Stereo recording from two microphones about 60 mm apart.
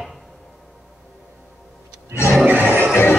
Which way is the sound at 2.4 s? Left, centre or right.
Right.